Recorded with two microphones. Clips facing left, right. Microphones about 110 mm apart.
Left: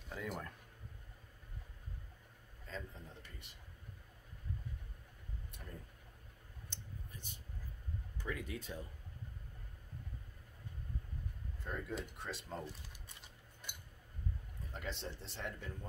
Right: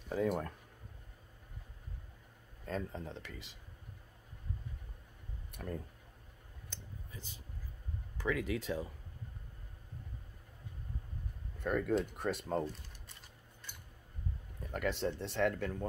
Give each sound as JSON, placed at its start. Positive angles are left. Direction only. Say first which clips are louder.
{"t": 0.1, "sound": "speech", "louder": "right 10 dB", "side_deg": -40}
{"t": 2.6, "sound": "speech", "louder": "right 9 dB", "side_deg": -55}
{"t": 3.1, "sound": "speech", "louder": "right 9 dB", "side_deg": -90}
{"t": 5.5, "sound": "speech", "louder": "right 13 dB", "side_deg": -60}
{"t": 8.2, "sound": "speech", "louder": "right 9 dB", "side_deg": -90}
{"t": 11.6, "sound": "speech", "louder": "right 11 dB", "side_deg": -60}
{"t": 14.7, "sound": "speech", "louder": "right 10 dB", "side_deg": -60}